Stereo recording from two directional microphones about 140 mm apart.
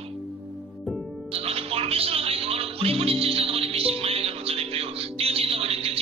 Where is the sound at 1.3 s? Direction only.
45° right (ahead or behind).